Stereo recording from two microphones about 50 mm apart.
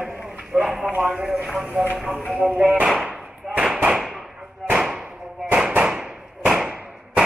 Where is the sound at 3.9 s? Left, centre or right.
Centre.